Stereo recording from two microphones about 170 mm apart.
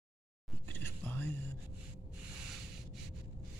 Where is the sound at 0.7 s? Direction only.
10° left (ahead or behind).